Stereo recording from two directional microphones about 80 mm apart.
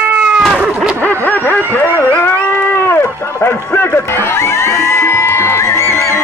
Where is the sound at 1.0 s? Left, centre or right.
Left.